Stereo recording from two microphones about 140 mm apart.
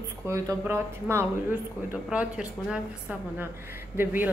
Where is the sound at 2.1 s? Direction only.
10° right (ahead or behind).